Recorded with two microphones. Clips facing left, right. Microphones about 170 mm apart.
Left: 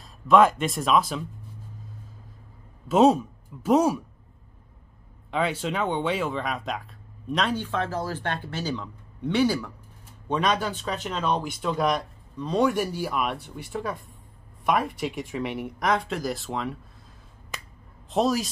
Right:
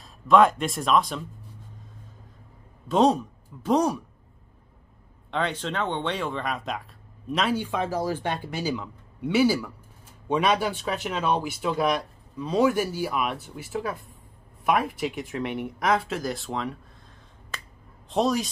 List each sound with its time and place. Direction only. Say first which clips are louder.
0.0 s speech: even; centre (ahead or behind)
2.9 s speech: left 2 dB; 5° left (ahead or behind)
5.3 s speech: left 2 dB; 5° left (ahead or behind)
17.5 s finger snapping: even; 15° left (ahead or behind)
18.1 s speech: even; centre (ahead or behind)